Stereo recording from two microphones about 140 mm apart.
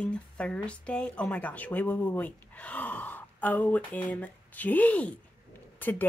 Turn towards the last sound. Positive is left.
turn(degrees=15)  # may be behind; listen again after turning